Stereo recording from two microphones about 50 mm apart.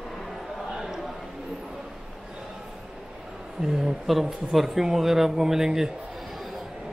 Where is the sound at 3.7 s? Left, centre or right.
Centre.